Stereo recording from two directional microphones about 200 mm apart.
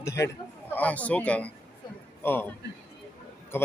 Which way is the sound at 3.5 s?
10° left (ahead or behind).